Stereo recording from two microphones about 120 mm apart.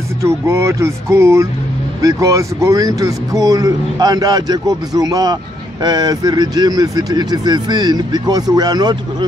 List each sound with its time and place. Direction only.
0.2 s speech: 25° right (ahead or behind)